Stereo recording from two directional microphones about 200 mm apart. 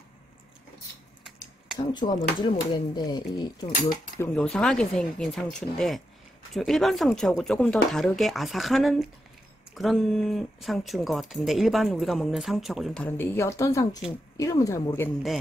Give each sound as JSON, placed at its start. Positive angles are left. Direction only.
{"t": 1.7, "sound": "a sound", "side_deg": -5}
{"t": 2.5, "sound": "speech", "side_deg": 20}
{"t": 4.2, "sound": "speech", "side_deg": 5}